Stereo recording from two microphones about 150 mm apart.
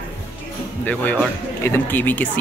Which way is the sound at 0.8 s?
10° left (ahead or behind).